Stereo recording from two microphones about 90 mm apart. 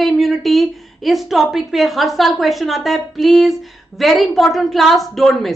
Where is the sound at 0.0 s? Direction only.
Centre (ahead or behind).